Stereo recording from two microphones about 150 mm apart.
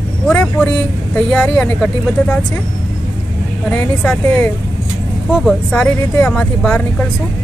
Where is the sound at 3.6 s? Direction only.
10° left (ahead or behind).